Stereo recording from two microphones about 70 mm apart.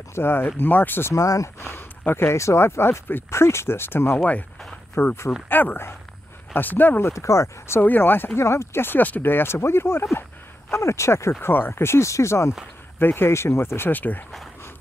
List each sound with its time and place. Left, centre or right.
0.1 s speech: left
1.1 s speech: left
1.6 s speech: left
4.2 s speech: left
4.9 s speech: left
7.1 s speech: left
7.8 s speech: left
8.4 s speech: left
11.4 s speech: left
13.0 s speech: left